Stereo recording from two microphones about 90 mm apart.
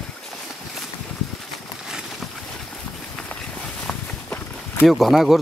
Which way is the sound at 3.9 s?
10° left (ahead or behind).